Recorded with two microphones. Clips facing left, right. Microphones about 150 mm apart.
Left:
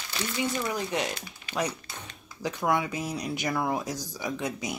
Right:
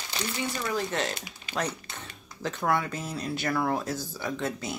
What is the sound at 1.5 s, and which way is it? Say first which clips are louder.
Speech: left 1 dB; 10° left (ahead or behind).